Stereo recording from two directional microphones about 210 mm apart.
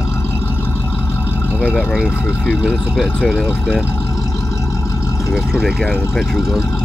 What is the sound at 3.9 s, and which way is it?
Vehicle, 15° left (ahead or behind).